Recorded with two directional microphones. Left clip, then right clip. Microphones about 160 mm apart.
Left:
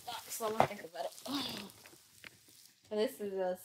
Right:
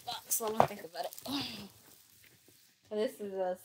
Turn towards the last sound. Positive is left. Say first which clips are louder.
# right 1 dB
turn(degrees=0)  # may be behind; listen again after turning